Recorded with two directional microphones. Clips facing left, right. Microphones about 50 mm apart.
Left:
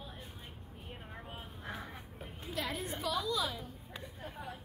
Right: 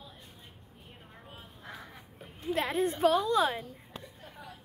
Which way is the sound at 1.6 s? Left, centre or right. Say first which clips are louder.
Left 1 dB; centre.